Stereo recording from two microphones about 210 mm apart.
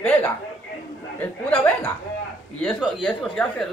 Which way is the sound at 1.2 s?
5° left (ahead or behind).